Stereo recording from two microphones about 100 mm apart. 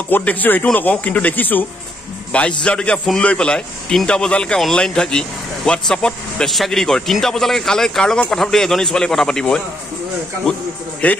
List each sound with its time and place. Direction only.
0.1 s a man's voice: 15° left (ahead or behind)